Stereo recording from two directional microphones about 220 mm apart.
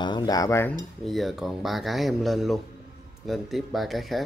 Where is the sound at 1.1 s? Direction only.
Centre (ahead or behind).